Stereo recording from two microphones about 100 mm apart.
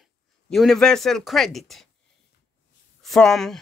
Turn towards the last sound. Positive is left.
turn(degrees=5)  # may be behind; listen again after turning